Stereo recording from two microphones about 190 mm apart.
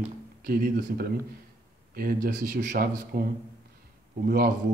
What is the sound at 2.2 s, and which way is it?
Speech, 45° right (ahead or behind).